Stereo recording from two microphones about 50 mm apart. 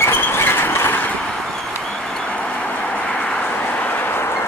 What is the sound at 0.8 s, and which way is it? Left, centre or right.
Vehicle, left.